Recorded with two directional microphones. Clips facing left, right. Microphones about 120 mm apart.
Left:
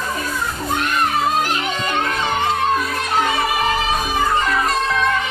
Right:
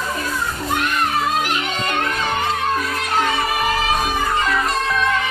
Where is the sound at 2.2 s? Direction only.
20° left (ahead or behind).